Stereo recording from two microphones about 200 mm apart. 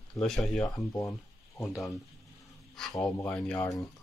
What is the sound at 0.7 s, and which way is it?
Speech, 15° left (ahead or behind).